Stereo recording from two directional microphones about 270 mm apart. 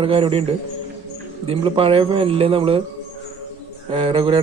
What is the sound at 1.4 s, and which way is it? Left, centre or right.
A man's voice, centre.